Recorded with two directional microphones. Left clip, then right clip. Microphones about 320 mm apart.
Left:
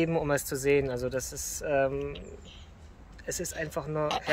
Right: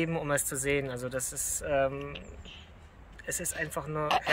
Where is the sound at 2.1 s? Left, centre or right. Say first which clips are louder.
Even; centre.